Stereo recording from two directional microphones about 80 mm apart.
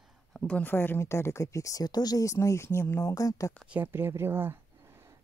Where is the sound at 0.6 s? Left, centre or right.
Left.